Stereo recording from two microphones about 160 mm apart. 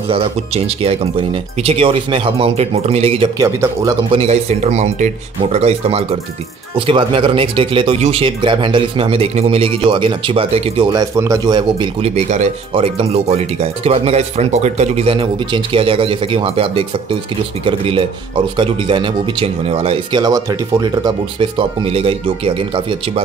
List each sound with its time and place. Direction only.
0.1 s speech: 35° right (ahead or behind)
3.3 s speech: 20° right (ahead or behind)
4.1 s speech: 40° right (ahead or behind)
10.9 s speech: 20° right (ahead or behind)
12.3 s speech: 40° right (ahead or behind)